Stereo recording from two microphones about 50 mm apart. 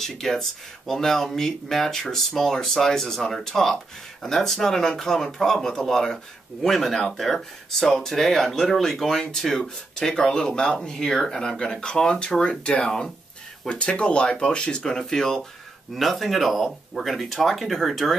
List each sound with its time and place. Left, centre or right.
0.0 s speech: centre